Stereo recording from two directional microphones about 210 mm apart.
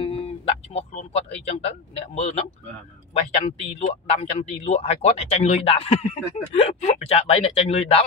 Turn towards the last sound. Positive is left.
turn(degrees=30)  # may be behind; listen again after turning